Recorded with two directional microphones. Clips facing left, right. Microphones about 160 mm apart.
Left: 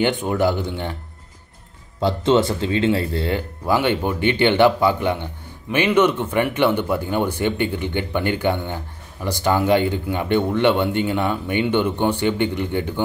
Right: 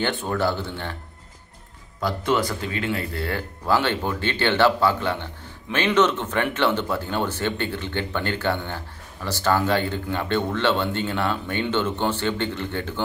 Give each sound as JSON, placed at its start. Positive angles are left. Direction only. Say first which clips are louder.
{"t": 0.0, "sound": "speech", "louder": "left 5 dB", "side_deg": 15}
{"t": 2.0, "sound": "speech", "louder": "left 6 dB", "side_deg": 25}